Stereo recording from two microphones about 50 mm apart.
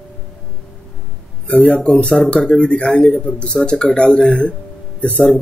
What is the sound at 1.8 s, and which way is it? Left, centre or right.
A man's voice, centre.